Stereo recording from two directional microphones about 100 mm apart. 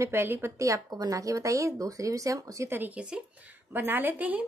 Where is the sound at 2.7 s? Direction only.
15° right (ahead or behind).